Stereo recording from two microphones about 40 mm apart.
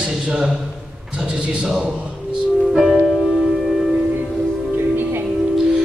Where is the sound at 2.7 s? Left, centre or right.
Centre.